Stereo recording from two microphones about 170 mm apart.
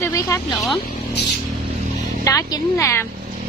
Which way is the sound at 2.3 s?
20° left (ahead or behind).